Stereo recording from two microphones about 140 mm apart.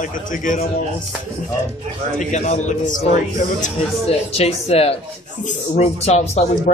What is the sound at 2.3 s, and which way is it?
Speech, 55° left (ahead or behind).